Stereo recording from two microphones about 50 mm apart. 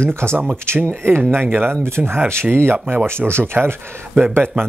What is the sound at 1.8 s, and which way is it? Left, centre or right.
Speech, right.